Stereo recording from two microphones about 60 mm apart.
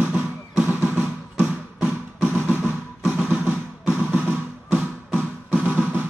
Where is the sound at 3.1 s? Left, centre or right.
Centre.